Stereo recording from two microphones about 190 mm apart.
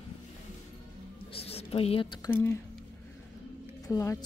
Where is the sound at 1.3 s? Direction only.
30° left (ahead or behind).